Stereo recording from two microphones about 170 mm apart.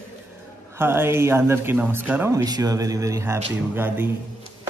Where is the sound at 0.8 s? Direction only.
15° right (ahead or behind).